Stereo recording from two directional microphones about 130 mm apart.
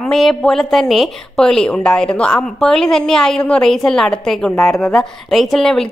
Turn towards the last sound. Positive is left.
turn(degrees=5)  # may be behind; listen again after turning